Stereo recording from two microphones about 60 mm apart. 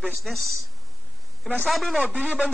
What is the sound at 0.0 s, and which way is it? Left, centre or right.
Speech, centre.